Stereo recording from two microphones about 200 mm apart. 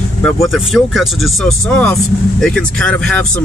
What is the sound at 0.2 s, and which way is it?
Speech, centre (ahead or behind).